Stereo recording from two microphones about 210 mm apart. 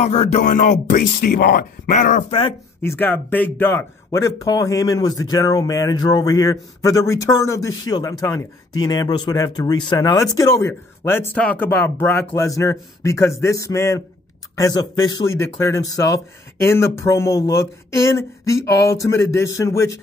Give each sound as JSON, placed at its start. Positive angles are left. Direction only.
{"t": 0.0, "sound": "speech", "side_deg": 30}
{"t": 2.8, "sound": "speech", "side_deg": 10}